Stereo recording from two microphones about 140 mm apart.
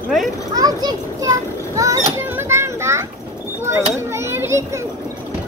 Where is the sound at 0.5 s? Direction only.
25° right (ahead or behind).